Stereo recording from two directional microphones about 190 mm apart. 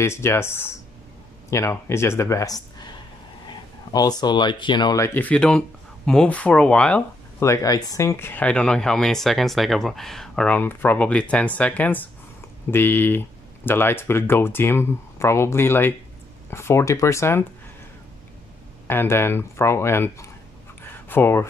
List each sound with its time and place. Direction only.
0.0 s speech: 15° left (ahead or behind)
18.9 s speech: 10° left (ahead or behind)